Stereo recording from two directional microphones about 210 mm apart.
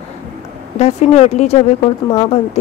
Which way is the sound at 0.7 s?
30° left (ahead or behind).